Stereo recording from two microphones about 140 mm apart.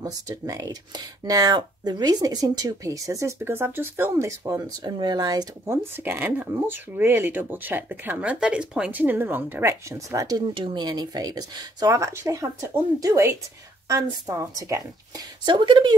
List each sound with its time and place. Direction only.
0.0 s speech: 25° right (ahead or behind)
5.9 s speech: 15° right (ahead or behind); by 15.9 s 35° right (ahead or behind)